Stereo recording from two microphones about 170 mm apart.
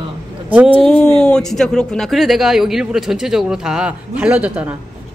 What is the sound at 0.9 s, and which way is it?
A woman's voice, 5° left (ahead or behind).